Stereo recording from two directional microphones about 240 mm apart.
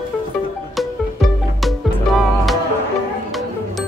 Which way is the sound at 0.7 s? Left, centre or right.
Centre.